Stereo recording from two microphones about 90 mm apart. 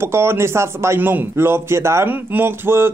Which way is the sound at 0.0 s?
30° right (ahead or behind).